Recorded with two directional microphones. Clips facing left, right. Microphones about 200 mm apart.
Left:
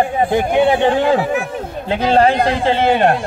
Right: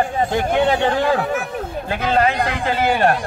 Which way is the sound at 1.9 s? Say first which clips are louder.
Left 5 dB; 30° left (ahead or behind).